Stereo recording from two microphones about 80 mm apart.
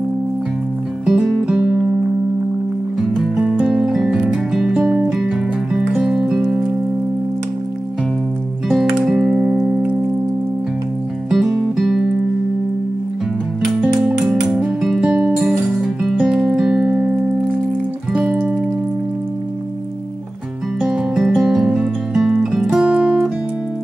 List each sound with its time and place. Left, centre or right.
1.0 s music: centre
3.0 s music: centre
8.6 s music: centre
11.2 s music: centre
14.0 s music: centre
15.0 s music: centre
15.4 s music: centre
18.1 s music: centre
20.8 s music: centre